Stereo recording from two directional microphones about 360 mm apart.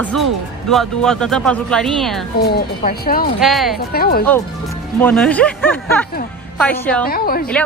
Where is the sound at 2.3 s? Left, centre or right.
Left.